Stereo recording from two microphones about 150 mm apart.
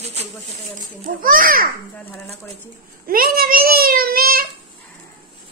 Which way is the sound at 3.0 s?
75° right (ahead or behind).